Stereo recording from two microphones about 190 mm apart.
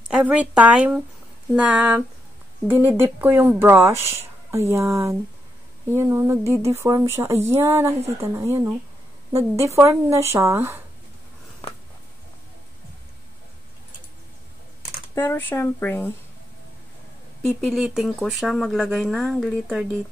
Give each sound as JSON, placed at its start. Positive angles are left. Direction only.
{"t": 0.1, "sound": "speech", "side_deg": -5}
{"t": 15.1, "sound": "speech", "side_deg": 10}
{"t": 17.5, "sound": "speech", "side_deg": 0}